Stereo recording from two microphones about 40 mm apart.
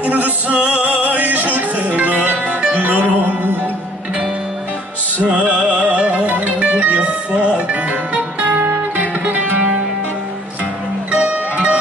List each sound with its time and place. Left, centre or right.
0.0 s music: right
5.2 s music: right
11.1 s music: right